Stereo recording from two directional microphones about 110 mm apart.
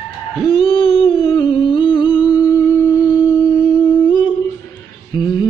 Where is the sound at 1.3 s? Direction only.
45° left (ahead or behind).